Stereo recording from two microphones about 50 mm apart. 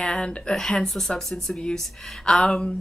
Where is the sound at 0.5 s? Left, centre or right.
Centre.